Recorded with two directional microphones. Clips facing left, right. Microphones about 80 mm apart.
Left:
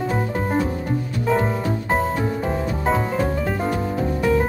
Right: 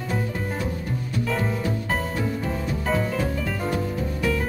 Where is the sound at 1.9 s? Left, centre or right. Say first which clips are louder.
Left 8 dB; left.